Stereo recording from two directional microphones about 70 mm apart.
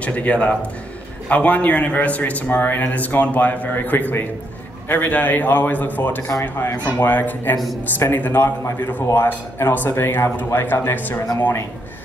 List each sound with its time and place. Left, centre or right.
0.0 s a man's voice: left